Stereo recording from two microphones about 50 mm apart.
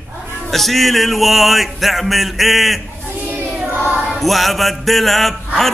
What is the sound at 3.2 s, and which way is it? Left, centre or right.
Choir, right.